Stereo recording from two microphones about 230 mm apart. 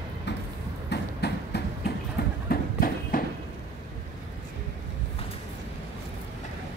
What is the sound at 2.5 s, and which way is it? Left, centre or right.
Train, left.